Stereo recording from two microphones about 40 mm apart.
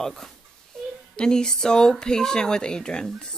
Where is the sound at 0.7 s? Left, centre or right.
Centre.